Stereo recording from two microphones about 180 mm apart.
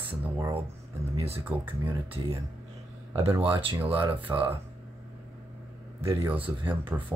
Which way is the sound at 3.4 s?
30° right (ahead or behind).